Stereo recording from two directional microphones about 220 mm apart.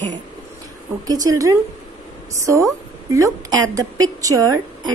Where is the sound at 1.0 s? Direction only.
15° right (ahead or behind).